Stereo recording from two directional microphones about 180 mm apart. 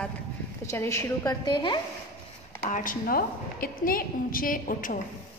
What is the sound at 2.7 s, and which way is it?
A woman's voice, 50° left (ahead or behind).